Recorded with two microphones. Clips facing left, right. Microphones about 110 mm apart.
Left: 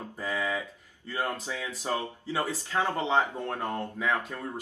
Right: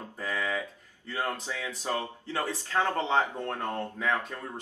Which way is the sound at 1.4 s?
15° left (ahead or behind).